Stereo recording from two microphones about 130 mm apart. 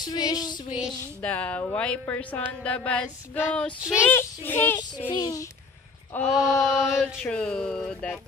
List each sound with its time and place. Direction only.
0.0 s a child's voice: 30° left (ahead or behind)
1.2 s speech: 10° left (ahead or behind)
4.7 s a child's voice: 35° left (ahead or behind)
6.1 s mantra: centre (ahead or behind)